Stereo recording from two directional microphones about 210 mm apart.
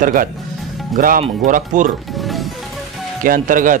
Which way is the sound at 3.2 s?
40° right (ahead or behind).